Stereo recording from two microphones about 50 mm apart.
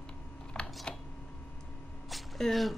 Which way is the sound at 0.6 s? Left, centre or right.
Centre.